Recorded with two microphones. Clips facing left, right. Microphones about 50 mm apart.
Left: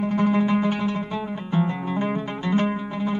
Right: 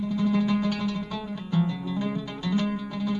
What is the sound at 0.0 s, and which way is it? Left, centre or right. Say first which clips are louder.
Music: left 4 dB; left.